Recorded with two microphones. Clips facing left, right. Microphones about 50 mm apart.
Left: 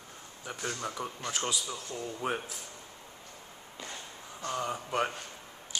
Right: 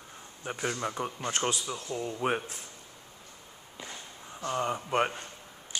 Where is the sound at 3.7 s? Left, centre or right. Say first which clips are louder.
Even; centre.